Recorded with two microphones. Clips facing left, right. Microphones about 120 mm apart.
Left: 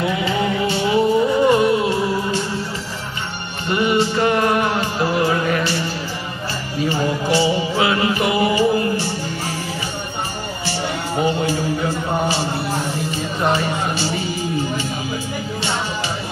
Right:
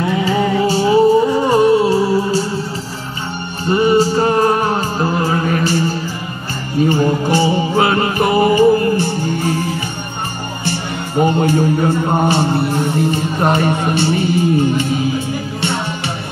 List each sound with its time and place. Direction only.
0.2 s music: 40° right (ahead or behind)
3.6 s music: 35° right (ahead or behind); by 9.8 s 55° right (ahead or behind)
11.2 s music: 55° right (ahead or behind)